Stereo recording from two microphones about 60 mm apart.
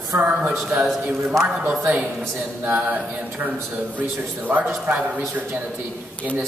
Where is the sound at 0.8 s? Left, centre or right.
Centre.